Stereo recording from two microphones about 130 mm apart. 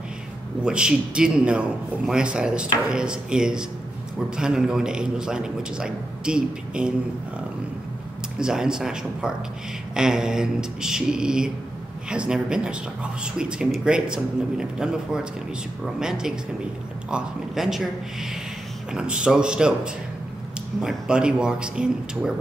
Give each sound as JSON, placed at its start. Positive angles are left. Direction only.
{"t": 0.6, "sound": "a man's voice", "side_deg": -5}
{"t": 8.4, "sound": "a man's voice", "side_deg": -5}